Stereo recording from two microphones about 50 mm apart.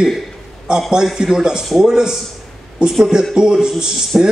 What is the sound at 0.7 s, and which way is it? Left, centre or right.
A man's voice, centre.